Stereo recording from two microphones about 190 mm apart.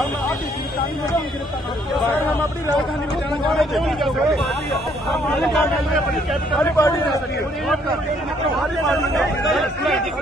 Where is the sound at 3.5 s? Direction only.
Centre (ahead or behind).